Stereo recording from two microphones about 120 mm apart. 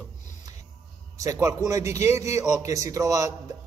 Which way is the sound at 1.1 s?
30° right (ahead or behind).